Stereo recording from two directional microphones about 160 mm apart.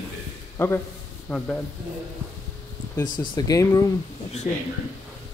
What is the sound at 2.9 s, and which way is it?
Speech, 25° left (ahead or behind).